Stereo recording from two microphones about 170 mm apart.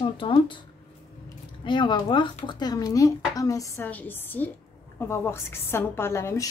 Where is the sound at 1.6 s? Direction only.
25° left (ahead or behind).